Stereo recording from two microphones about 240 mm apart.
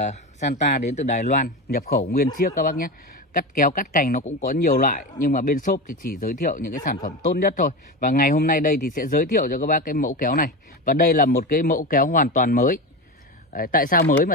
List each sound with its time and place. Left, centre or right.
0.0 s speech: left